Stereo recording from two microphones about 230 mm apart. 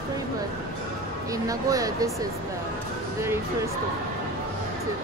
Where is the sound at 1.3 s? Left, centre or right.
Centre.